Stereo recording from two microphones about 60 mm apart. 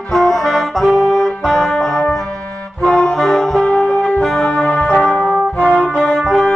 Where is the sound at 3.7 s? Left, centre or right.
Left.